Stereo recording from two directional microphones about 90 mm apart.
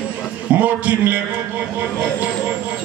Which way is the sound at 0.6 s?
20° right (ahead or behind).